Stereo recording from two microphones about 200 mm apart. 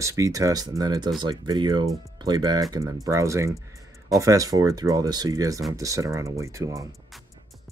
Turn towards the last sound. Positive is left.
turn(degrees=-15)  # may be behind; listen again after turning